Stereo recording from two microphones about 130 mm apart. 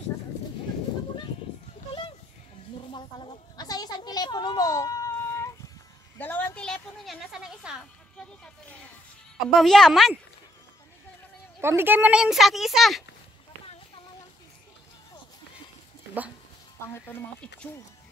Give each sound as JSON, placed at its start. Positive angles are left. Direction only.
{"t": 2.9, "sound": "a sound", "side_deg": 40}
{"t": 9.5, "sound": "speech", "side_deg": 5}
{"t": 11.6, "sound": "speech", "side_deg": -15}
{"t": 16.9, "sound": "speech", "side_deg": 10}